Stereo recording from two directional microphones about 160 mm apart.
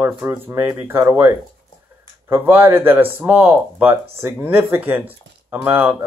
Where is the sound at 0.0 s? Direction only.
20° right (ahead or behind).